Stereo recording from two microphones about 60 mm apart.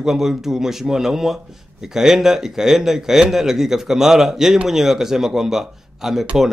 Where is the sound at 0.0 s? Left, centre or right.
Centre.